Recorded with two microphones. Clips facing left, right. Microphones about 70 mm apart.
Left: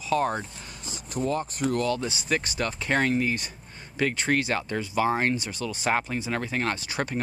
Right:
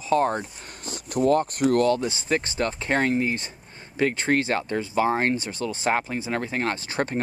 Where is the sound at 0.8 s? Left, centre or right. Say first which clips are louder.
Right 7 dB; right.